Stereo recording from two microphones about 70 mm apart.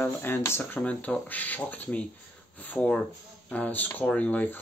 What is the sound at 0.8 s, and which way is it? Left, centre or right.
Speech, centre.